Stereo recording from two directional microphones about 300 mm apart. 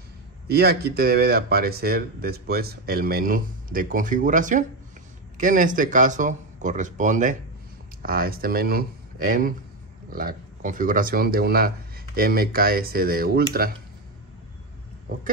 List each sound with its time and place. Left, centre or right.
0.5 s speech: right